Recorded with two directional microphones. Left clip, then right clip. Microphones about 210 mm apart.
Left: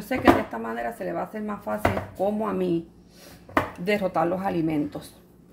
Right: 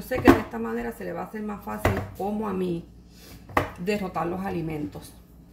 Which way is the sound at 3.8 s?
50° left (ahead or behind).